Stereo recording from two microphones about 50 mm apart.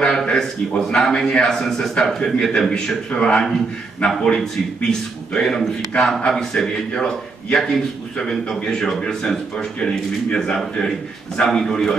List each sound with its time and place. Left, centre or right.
0.0 s a man's voice: centre
2.7 s a man's voice: centre